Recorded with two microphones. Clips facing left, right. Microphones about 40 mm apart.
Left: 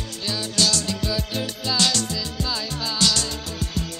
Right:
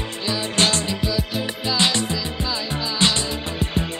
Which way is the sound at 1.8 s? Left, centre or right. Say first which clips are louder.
Right 2 dB; right.